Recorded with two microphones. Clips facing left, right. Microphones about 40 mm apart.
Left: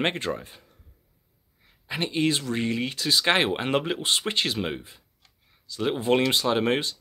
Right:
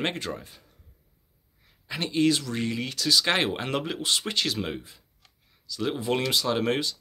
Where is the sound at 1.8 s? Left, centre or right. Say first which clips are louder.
Right 1 dB; left.